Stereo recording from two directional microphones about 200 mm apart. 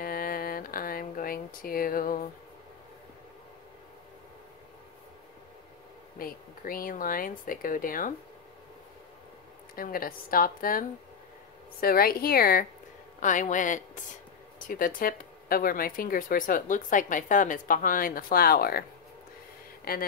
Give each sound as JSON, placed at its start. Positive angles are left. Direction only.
{"t": 0.0, "sound": "a sound", "side_deg": 45}
{"t": 6.1, "sound": "speech", "side_deg": 45}
{"t": 9.8, "sound": "a man's voice", "side_deg": 45}